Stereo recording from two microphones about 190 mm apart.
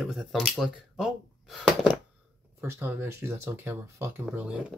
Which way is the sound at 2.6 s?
15° right (ahead or behind).